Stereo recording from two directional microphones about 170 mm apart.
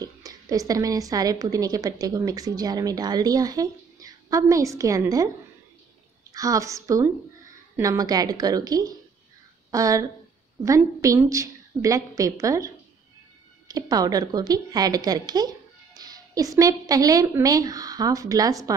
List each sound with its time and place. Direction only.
0.0 s a woman's voice: 20° right (ahead or behind)
6.3 s a woman's voice: 20° right (ahead or behind)